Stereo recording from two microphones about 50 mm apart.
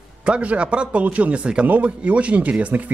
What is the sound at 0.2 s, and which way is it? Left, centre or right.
A man's voice, right.